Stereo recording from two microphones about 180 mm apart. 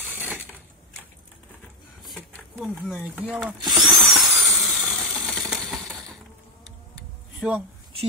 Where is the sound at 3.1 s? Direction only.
5° right (ahead or behind).